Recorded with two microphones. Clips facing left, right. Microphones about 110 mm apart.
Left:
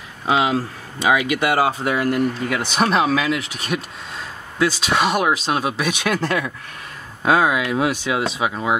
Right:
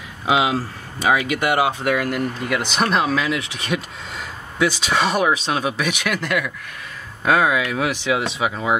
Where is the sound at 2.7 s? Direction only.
10° left (ahead or behind).